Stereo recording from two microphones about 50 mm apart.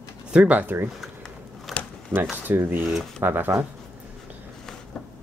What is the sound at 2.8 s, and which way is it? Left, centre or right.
Speech, centre.